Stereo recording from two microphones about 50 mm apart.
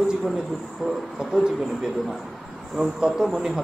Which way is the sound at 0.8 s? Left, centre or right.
Centre.